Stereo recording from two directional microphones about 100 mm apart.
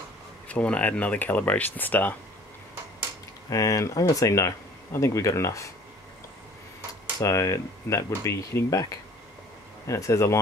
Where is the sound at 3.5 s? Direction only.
35° left (ahead or behind).